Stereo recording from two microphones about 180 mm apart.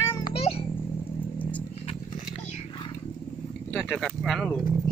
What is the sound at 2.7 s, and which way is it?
Vehicle, 25° left (ahead or behind).